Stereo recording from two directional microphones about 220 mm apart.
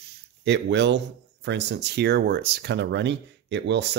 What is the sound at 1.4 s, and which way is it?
Speech, 50° right (ahead or behind).